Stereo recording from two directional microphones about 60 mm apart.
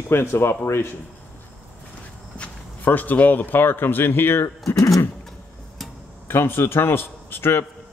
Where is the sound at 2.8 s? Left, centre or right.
Left.